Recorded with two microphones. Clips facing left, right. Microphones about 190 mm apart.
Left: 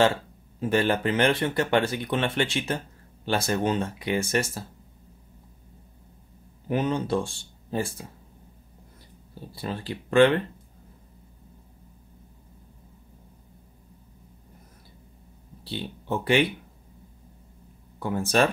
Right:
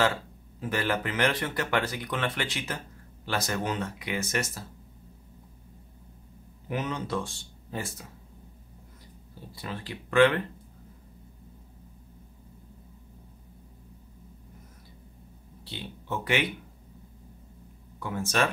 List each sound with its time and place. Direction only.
0.0 s speech: 25° left (ahead or behind)
6.7 s speech: 30° left (ahead or behind)
9.6 s speech: 30° left (ahead or behind)
15.6 s speech: 35° left (ahead or behind)
17.9 s speech: 35° left (ahead or behind)